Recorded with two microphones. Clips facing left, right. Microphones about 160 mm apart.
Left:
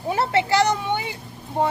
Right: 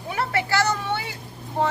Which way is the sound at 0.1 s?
25° left (ahead or behind).